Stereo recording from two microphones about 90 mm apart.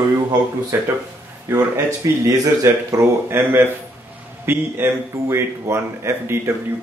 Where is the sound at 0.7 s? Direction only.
30° right (ahead or behind).